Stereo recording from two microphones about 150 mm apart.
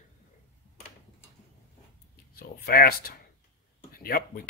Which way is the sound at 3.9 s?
85° left.